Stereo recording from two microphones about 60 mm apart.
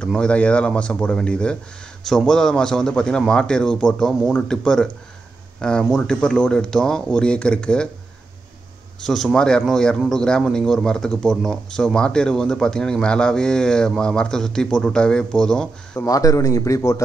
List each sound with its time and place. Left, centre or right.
0.2 s speech: centre
9.0 s speech: centre
16.1 s a man's voice: left